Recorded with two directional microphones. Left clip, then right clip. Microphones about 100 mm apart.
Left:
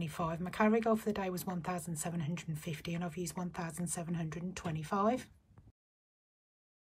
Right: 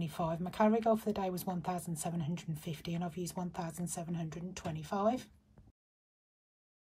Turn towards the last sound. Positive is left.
turn(degrees=-30)  # may be behind; listen again after turning